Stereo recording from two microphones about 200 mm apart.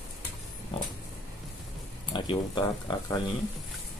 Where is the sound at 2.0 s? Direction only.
25° left (ahead or behind).